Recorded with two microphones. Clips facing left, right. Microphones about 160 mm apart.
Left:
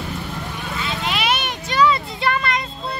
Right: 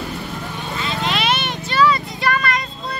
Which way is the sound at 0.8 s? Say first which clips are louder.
Right 2 dB; 10° left (ahead or behind).